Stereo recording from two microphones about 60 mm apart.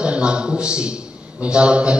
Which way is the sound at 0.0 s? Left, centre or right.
Centre.